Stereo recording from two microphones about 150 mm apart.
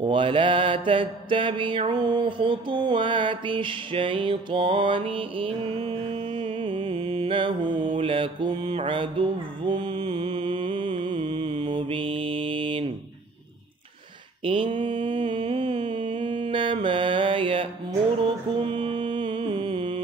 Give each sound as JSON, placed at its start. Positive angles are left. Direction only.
{"t": 0.0, "sound": "mantra", "side_deg": -35}
{"t": 14.4, "sound": "mantra", "side_deg": -35}
{"t": 15.4, "sound": "music", "side_deg": -45}
{"t": 15.9, "sound": "mantra", "side_deg": -35}
{"t": 18.6, "sound": "music", "side_deg": -35}